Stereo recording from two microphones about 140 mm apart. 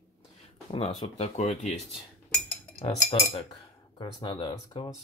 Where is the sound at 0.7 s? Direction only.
50° left (ahead or behind).